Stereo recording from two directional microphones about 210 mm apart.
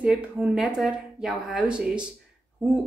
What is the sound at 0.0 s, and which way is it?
A woman's voice, centre (ahead or behind).